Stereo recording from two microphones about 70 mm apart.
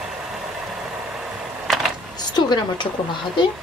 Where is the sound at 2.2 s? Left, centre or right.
Left.